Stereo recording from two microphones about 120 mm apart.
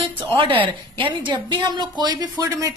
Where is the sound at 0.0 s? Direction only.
45° right (ahead or behind).